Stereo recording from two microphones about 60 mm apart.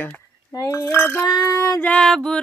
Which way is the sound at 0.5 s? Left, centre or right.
Left.